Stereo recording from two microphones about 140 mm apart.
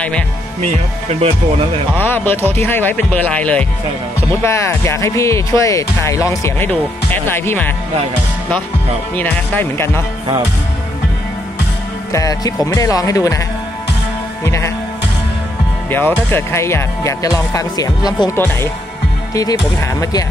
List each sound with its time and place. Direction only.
1.0 s speech: 45° right (ahead or behind)
2.0 s speech: 15° left (ahead or behind)
4.4 s speech: 20° left (ahead or behind)
9.1 s speech: 10° left (ahead or behind)
12.1 s speech: 25° left (ahead or behind)
14.4 s music: 20° left (ahead or behind)
15.9 s speech: 15° left (ahead or behind)
18.3 s speech: 20° left (ahead or behind)